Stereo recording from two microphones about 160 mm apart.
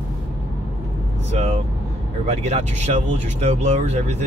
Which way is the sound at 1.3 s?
45° right (ahead or behind).